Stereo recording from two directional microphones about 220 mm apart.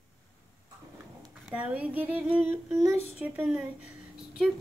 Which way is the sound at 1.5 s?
5° right (ahead or behind).